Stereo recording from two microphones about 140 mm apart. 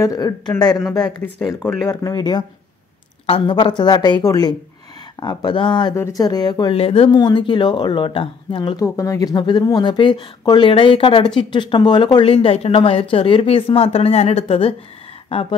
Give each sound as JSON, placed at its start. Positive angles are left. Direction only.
{"t": 0.0, "sound": "speech", "side_deg": 25}
{"t": 0.8, "sound": "speech", "side_deg": 5}
{"t": 1.9, "sound": "speech", "side_deg": 25}
{"t": 3.3, "sound": "speech", "side_deg": 40}
{"t": 5.9, "sound": "speech", "side_deg": 25}
{"t": 6.7, "sound": "speech", "side_deg": 45}
{"t": 7.1, "sound": "speech", "side_deg": 30}
{"t": 8.8, "sound": "speech", "side_deg": 25}